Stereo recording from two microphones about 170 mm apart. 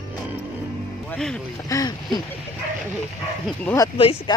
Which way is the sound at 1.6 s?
20° left (ahead or behind).